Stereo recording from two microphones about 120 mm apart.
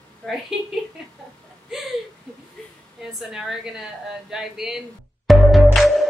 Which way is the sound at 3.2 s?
5° right (ahead or behind).